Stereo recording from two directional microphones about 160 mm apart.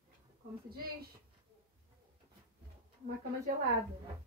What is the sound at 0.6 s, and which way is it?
Speech, 70° right (ahead or behind).